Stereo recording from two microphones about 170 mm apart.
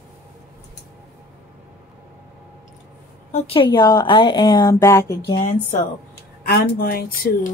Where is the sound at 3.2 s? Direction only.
40° left (ahead or behind); by 5.4 s 20° left (ahead or behind).